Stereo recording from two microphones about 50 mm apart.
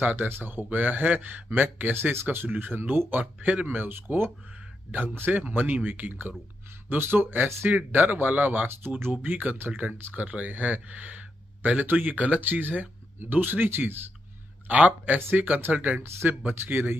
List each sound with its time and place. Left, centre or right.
0.0 s speech: right
3.3 s speech: right
3.6 s speech: right
5.5 s speech: right
14.7 s speech: right